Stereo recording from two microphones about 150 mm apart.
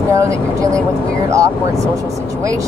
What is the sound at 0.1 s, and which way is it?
Speech, 20° right (ahead or behind).